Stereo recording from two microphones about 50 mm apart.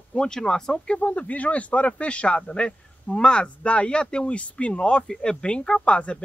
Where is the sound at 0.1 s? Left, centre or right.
Centre.